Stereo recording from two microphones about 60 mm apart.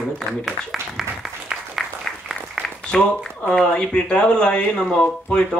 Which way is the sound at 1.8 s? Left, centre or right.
Centre.